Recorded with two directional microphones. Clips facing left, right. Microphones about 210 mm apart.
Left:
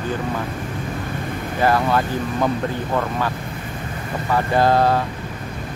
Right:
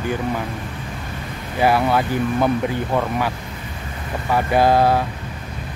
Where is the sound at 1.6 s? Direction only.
10° right (ahead or behind).